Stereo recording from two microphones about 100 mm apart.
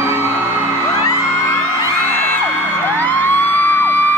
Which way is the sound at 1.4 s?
25° left (ahead or behind).